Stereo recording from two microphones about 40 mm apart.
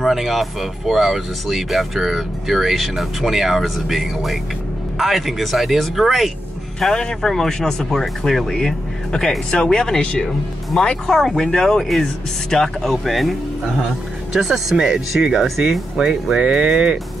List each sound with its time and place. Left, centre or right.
0.0 s speech: centre
6.8 s speech: centre
8.5 s speech: centre
11.1 s speech: centre
13.8 s speech: centre
16.3 s speech: right